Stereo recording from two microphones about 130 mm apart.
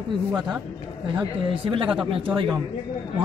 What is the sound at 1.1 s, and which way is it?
A man's voice, 40° right (ahead or behind).